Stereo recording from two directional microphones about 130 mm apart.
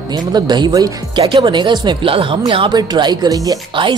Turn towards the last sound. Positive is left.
turn(degrees=-35)  # may be behind; listen again after turning